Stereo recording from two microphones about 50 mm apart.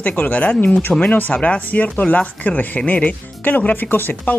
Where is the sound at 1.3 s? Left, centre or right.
Left.